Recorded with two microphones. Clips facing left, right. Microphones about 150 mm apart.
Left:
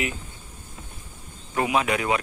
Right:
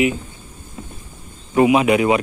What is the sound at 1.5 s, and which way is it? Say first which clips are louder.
Speech: right 10 dB; 15° right (ahead or behind).